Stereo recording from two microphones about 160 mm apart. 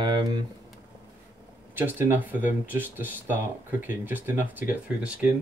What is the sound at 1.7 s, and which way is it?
Speech, 15° right (ahead or behind).